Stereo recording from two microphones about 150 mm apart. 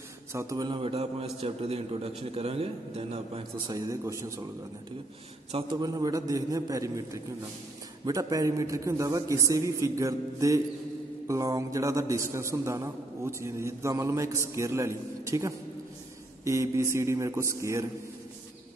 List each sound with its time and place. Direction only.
0.3 s a man's voice: 20° right (ahead or behind); by 3.7 s 40° right (ahead or behind)
3.7 s a man's voice: 25° right (ahead or behind)
5.5 s a man's voice: 45° right (ahead or behind)
5.8 s a man's voice: 25° right (ahead or behind)
8.0 s a man's voice: 25° right (ahead or behind)